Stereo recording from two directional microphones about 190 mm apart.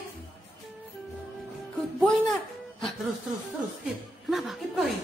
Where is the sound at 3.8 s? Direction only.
Centre (ahead or behind).